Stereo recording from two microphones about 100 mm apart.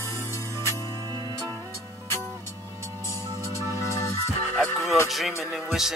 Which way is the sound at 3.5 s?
30° left (ahead or behind).